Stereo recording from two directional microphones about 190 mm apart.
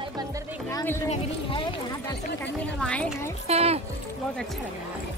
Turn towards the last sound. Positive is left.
turn(degrees=-35)  # may be behind; listen again after turning